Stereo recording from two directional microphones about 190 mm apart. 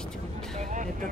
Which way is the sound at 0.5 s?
40° right (ahead or behind).